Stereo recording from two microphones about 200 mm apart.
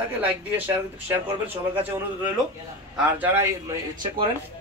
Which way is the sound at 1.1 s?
10° right (ahead or behind).